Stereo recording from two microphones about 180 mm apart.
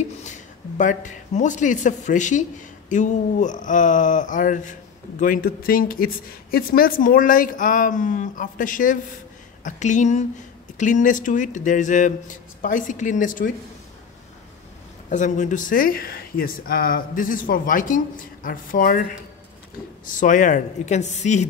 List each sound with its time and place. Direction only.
0.2 s speech: 45° left (ahead or behind)
15.0 s speech: 45° left (ahead or behind)